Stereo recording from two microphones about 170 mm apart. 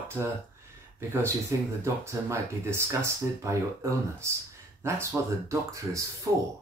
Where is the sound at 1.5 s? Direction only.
20° right (ahead or behind).